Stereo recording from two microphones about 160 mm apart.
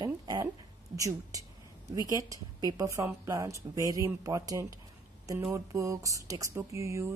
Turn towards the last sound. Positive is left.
turn(degrees=-20)  # may be behind; listen again after turning